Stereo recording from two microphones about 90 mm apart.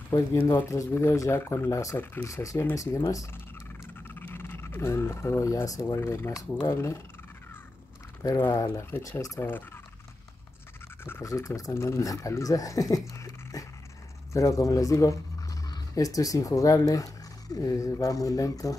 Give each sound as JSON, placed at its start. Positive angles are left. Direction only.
{"t": 0.1, "sound": "speech", "side_deg": 40}
{"t": 4.1, "sound": "scratch", "side_deg": 25}
{"t": 5.7, "sound": "speech", "side_deg": 30}
{"t": 8.2, "sound": "speech", "side_deg": 40}
{"t": 11.2, "sound": "speech", "side_deg": 35}